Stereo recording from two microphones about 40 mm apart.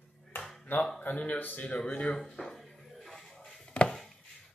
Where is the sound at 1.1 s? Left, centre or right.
Left.